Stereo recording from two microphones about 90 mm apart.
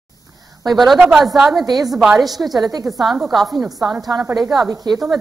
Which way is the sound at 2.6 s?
45° right (ahead or behind).